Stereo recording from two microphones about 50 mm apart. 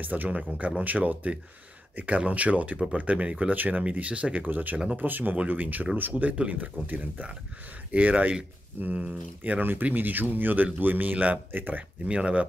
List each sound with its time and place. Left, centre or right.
0.0 s speech: right
12.1 s speech: right